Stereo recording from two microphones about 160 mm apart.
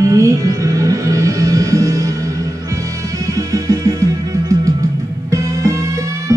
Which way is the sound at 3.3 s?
20° right (ahead or behind).